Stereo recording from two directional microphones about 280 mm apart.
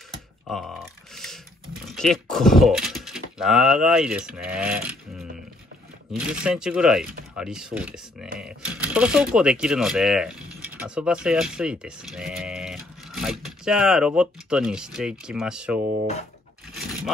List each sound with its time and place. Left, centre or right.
0.5 s speech: centre